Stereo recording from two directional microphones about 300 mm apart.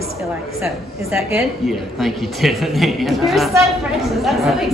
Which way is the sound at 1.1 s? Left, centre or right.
Centre.